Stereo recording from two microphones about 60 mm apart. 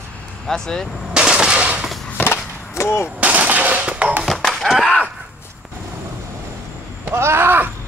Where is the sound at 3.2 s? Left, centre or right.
Right.